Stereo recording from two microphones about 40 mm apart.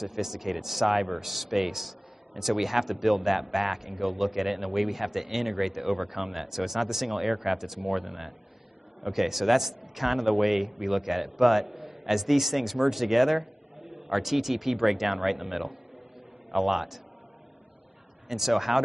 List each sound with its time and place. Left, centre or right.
0.0 s speech: centre
5.8 s speech: centre
6.0 s speech: centre
18.3 s speech: centre